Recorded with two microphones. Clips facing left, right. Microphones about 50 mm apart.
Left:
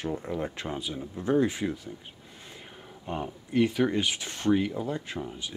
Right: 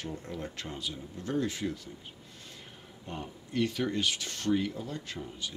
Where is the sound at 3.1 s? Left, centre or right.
Left.